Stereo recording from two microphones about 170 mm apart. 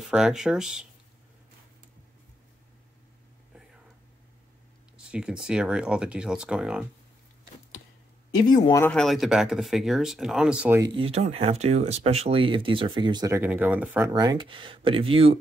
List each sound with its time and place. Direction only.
0.1 s speech: 5° right (ahead or behind)
4.9 s speech: 5° right (ahead or behind)
8.8 s speech: 5° left (ahead or behind)
11.0 s speech: 35° right (ahead or behind)
13.3 s speech: 10° right (ahead or behind)
14.1 s speech: 25° right (ahead or behind)